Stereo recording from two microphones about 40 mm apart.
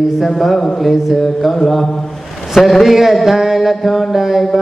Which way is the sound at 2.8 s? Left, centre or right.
Centre.